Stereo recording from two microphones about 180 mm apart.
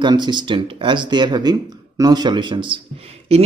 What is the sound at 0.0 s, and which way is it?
Speech, 25° right (ahead or behind).